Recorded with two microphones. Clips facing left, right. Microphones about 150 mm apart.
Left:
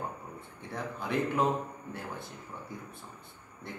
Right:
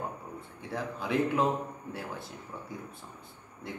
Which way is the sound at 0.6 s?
Centre (ahead or behind).